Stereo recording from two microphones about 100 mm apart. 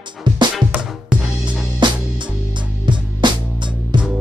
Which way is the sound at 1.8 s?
50° right (ahead or behind).